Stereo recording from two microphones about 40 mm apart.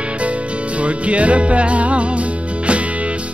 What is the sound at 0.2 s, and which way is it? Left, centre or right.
Music, right.